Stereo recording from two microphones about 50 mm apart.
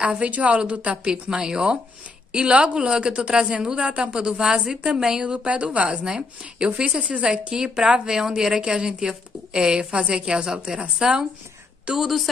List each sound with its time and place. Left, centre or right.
0.2 s a woman's voice: right
6.0 s a woman's voice: centre
12.0 s speech: centre